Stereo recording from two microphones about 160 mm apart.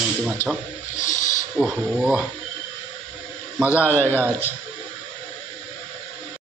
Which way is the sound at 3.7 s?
15° left (ahead or behind).